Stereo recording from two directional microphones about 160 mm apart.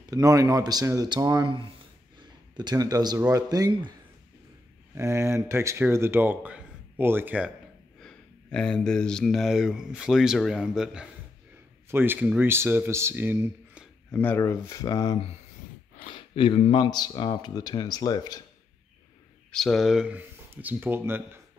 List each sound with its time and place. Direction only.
0.1 s speech: 20° right (ahead or behind)
4.9 s speech: 15° right (ahead or behind)
8.0 s speech: 5° left (ahead or behind); by 13.8 s 15° right (ahead or behind)
14.1 s speech: 10° left (ahead or behind)
16.1 s speech: 30° left (ahead or behind)
19.5 s speech: centre (ahead or behind); by 21.4 s 15° right (ahead or behind)